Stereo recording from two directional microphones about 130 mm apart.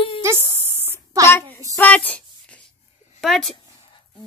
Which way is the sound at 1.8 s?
10° left (ahead or behind).